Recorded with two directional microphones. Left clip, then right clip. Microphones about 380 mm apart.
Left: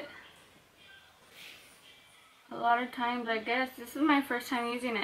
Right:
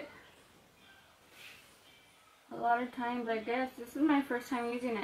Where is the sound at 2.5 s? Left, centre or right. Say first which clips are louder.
Left 3 dB; centre.